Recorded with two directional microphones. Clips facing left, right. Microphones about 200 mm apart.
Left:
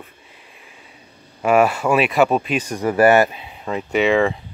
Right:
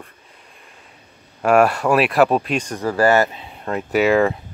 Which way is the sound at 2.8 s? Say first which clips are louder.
Left 3 dB; 20° left (ahead or behind).